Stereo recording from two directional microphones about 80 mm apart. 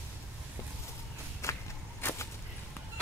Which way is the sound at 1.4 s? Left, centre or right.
Left.